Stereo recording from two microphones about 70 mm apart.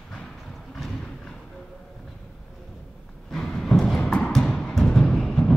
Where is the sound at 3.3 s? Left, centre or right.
Centre.